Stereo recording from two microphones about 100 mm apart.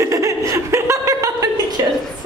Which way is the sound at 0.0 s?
30° right (ahead or behind).